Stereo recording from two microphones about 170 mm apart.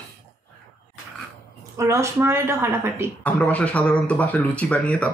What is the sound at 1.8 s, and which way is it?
A woman's voice, 15° right (ahead or behind).